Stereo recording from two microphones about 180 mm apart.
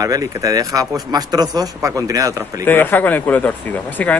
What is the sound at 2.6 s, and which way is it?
Speech, 10° left (ahead or behind).